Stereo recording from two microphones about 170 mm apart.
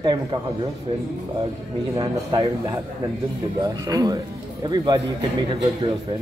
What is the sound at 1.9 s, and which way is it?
A man's voice, 25° right (ahead or behind).